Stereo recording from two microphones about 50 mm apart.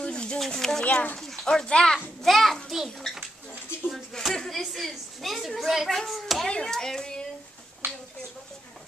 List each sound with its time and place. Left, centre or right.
0.0 s a sound: centre
0.4 s speech: centre
0.8 s speech: left
1.1 s speech: centre
2.2 s a child's voice: centre